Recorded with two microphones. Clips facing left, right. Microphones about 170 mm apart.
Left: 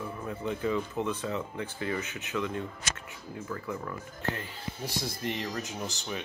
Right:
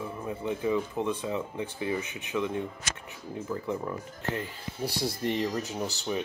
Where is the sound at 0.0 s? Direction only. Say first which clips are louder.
Right 1 dB; 10° right (ahead or behind).